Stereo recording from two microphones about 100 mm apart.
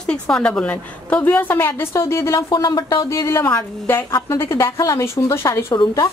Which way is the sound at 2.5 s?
50° left (ahead or behind).